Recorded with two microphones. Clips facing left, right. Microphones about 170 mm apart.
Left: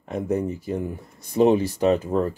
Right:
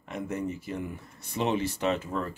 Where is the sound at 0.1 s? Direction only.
35° left (ahead or behind).